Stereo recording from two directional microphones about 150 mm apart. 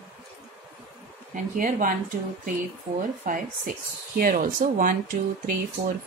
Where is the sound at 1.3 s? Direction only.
65° right (ahead or behind).